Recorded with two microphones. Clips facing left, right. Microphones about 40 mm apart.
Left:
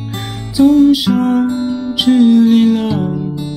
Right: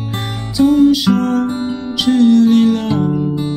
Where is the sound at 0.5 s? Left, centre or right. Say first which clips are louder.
Left 2 dB; centre.